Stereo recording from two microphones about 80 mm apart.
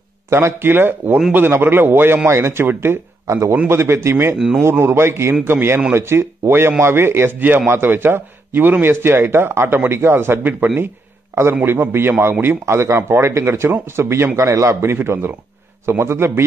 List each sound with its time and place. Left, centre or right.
0.3 s a man's voice: right
3.5 s a man's voice: right